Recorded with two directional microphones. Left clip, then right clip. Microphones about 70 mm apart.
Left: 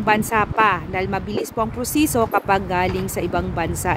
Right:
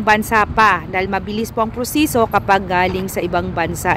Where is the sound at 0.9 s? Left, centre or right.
Left.